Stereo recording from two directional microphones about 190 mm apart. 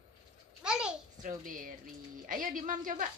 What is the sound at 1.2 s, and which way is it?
A woman's voice, 45° right (ahead or behind).